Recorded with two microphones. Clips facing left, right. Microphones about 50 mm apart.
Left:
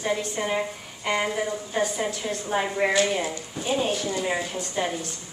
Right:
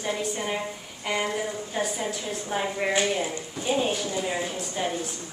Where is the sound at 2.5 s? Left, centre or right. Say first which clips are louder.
Left 3 dB; centre.